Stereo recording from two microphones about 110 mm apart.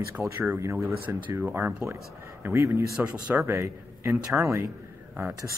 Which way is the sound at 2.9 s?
10° right (ahead or behind).